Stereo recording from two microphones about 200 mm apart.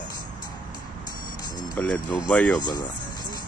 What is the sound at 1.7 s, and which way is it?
Speech, 5° left (ahead or behind).